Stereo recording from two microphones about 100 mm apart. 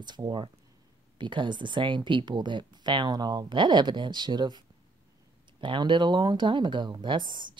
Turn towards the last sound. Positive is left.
turn(degrees=-50)  # may be behind; listen again after turning